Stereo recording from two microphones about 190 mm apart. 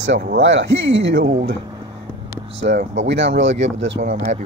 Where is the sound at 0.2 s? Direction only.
65° right (ahead or behind).